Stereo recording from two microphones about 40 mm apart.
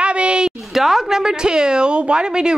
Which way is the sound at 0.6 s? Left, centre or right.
Centre.